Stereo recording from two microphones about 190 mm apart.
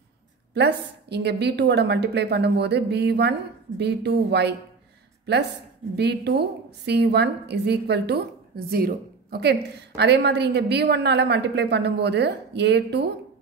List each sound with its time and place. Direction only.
0.6 s a woman's voice: 60° right (ahead or behind)
5.9 s a woman's voice: 60° right (ahead or behind)